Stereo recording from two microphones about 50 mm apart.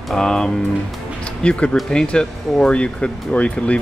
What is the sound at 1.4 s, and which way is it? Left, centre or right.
Speech, left.